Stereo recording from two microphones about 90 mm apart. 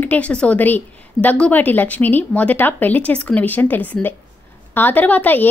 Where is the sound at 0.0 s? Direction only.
15° left (ahead or behind).